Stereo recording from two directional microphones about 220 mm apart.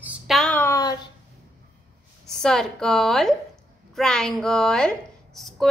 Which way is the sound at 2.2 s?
Centre (ahead or behind).